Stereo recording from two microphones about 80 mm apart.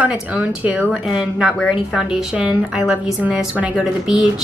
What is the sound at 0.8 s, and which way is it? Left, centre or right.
Speech, centre.